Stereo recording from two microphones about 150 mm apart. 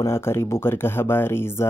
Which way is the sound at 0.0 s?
15° left (ahead or behind).